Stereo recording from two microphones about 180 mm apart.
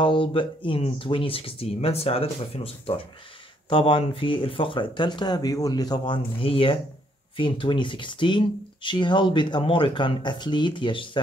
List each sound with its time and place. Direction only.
0.0 s speech: 30° left (ahead or behind)